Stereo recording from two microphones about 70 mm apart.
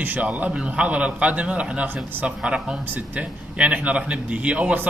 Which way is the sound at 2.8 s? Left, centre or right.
Right.